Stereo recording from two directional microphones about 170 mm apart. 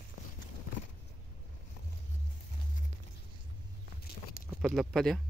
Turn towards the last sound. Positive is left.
turn(degrees=5)  # may be behind; listen again after turning